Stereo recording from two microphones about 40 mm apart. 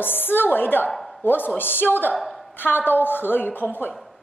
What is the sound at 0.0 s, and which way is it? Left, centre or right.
Speech, left.